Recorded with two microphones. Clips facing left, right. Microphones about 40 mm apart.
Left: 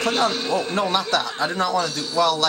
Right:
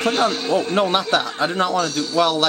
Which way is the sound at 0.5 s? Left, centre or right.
Right.